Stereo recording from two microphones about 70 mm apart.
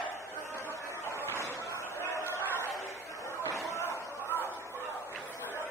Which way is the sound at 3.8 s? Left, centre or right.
Left.